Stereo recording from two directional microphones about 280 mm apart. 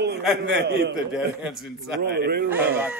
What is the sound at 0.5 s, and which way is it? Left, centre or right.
Speech, right.